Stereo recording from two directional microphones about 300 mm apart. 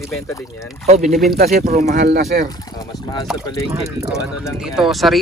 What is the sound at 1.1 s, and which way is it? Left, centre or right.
Speech, centre.